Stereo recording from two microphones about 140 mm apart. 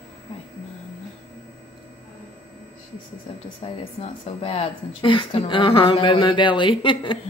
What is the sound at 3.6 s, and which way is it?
A woman's voice, 45° left (ahead or behind).